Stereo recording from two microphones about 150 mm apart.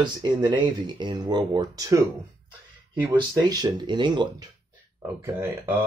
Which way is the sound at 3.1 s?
30° right (ahead or behind).